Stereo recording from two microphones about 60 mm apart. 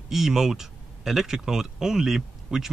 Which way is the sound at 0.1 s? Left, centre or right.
Centre.